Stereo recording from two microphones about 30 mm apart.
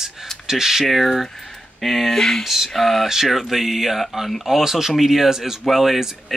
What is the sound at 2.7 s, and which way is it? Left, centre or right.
Speech, centre.